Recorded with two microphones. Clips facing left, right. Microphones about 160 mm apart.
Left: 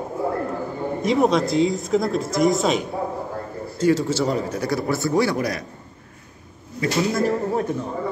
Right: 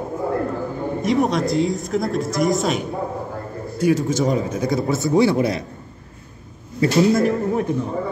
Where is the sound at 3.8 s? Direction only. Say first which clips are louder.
Right 1 dB; 15° right (ahead or behind).